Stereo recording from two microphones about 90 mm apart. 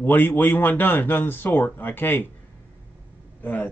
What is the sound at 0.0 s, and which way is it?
Speech, 25° left (ahead or behind).